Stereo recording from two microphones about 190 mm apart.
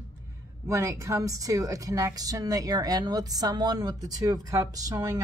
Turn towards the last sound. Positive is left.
turn(degrees=-20)  # may be behind; listen again after turning